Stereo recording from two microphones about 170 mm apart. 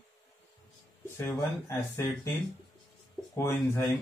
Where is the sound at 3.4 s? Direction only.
15° left (ahead or behind).